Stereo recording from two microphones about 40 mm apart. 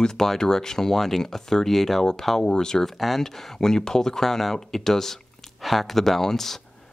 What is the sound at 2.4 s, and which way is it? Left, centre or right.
Speech, centre.